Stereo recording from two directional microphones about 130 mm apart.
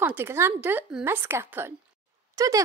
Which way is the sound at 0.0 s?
15° right (ahead or behind).